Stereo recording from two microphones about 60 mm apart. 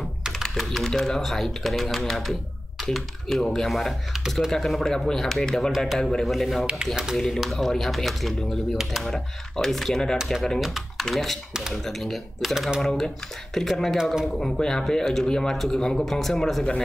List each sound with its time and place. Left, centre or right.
0.3 s speech: centre
6.6 s speech: centre
7.2 s speech: centre